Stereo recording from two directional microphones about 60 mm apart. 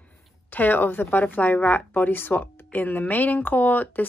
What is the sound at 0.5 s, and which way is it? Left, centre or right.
A woman's voice, left.